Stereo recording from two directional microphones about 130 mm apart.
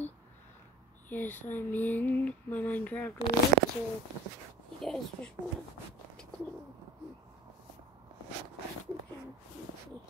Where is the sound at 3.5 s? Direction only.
85° right.